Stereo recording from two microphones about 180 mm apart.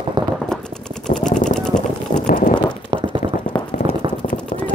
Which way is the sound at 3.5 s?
25° left (ahead or behind).